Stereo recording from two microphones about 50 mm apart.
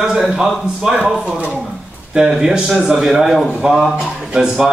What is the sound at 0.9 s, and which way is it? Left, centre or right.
Speech, right.